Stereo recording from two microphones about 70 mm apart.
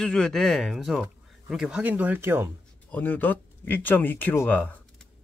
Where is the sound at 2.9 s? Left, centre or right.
Left.